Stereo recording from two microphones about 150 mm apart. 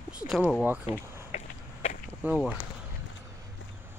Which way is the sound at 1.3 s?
45° left (ahead or behind).